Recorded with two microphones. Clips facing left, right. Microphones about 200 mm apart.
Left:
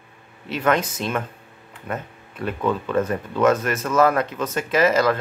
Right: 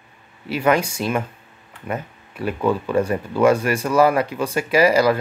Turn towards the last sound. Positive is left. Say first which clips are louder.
# right 3 dB
turn(degrees=-10)  # may be behind; listen again after turning